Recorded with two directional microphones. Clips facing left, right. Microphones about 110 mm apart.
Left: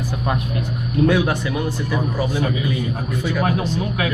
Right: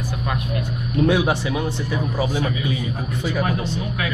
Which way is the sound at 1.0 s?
15° right (ahead or behind).